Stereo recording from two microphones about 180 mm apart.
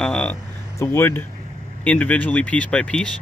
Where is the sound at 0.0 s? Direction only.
5° left (ahead or behind).